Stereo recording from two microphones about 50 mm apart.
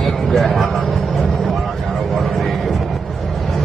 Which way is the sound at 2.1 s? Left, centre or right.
Centre.